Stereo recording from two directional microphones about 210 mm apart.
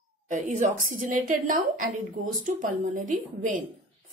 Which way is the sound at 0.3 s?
40° right (ahead or behind).